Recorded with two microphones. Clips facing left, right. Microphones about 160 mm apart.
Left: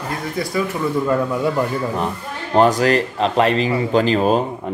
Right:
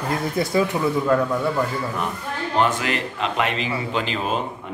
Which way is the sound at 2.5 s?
40° left (ahead or behind).